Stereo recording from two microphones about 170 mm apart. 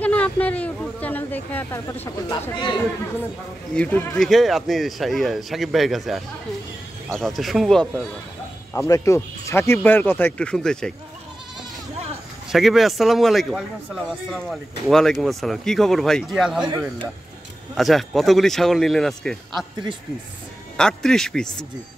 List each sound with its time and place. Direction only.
0.0 s speech: 10° left (ahead or behind)
2.5 s speech: 30° left (ahead or behind)
3.7 s a man's voice: 10° left (ahead or behind)
8.7 s speech: 20° left (ahead or behind)
12.4 s a man's voice: centre (ahead or behind)
17.7 s a man's voice: centre (ahead or behind)
20.7 s a man's voice: 5° left (ahead or behind)